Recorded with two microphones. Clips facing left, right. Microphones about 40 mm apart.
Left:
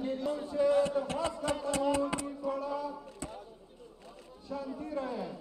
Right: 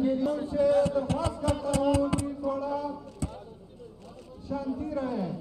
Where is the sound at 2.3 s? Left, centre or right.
Centre.